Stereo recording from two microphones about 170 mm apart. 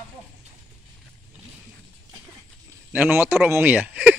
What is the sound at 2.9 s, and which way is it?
Speech, 10° right (ahead or behind).